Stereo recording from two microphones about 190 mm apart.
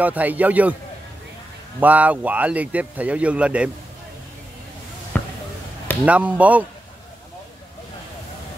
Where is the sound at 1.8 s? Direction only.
10° right (ahead or behind).